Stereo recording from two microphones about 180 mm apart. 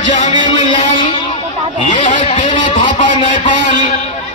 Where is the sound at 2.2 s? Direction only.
30° left (ahead or behind).